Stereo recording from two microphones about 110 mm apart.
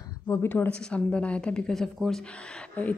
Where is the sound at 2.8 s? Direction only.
15° left (ahead or behind).